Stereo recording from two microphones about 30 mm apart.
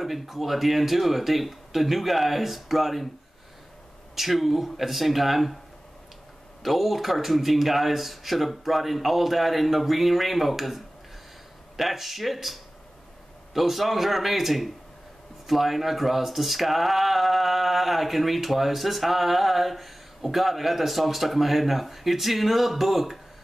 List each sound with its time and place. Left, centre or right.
0.0 s speech: centre
4.1 s speech: centre
6.6 s speech: centre